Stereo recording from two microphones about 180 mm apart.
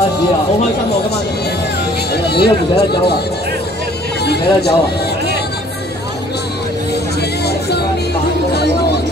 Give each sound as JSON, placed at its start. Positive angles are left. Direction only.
{"t": 2.2, "sound": "speech", "side_deg": 65}
{"t": 4.2, "sound": "speech", "side_deg": 65}
{"t": 7.2, "sound": "music", "side_deg": 65}